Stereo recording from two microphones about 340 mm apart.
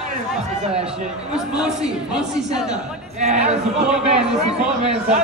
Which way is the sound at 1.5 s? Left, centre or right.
Centre.